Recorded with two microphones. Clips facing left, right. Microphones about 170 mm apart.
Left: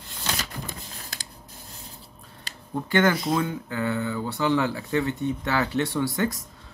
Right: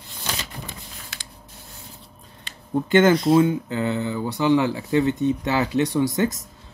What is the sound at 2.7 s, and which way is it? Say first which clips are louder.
Speech: right 6 dB; 20° right (ahead or behind).